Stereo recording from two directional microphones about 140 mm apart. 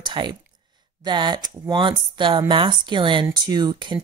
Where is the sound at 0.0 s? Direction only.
35° right (ahead or behind).